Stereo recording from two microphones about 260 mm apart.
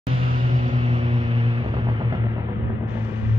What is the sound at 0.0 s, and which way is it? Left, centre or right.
Vehicle, right.